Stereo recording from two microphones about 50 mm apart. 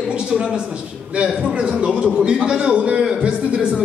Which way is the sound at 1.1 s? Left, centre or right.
Centre.